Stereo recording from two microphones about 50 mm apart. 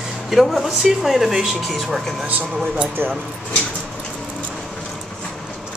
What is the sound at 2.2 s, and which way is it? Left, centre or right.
Speech, right.